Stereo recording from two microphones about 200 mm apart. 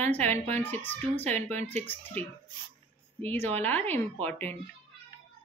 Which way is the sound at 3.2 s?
10° left (ahead or behind).